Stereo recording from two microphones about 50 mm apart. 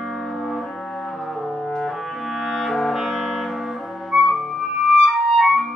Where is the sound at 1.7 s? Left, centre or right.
Centre.